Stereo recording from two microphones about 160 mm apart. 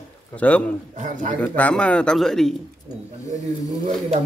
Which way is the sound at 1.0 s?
55° right (ahead or behind).